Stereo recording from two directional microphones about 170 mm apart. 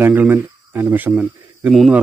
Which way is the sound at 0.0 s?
10° right (ahead or behind).